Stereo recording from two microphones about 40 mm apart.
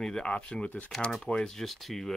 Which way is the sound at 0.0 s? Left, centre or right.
Centre.